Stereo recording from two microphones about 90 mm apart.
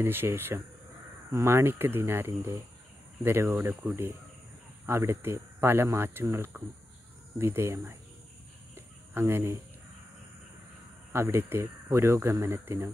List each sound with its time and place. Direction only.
0.0 s speech: 25° right (ahead or behind)
8.7 s a sound: 30° right (ahead or behind)
11.1 s speech: 25° right (ahead or behind)